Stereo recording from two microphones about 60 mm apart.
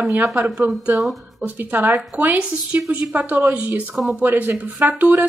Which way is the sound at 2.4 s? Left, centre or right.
Centre.